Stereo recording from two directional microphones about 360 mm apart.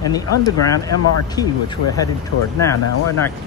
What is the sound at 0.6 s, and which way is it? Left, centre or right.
Speech, centre.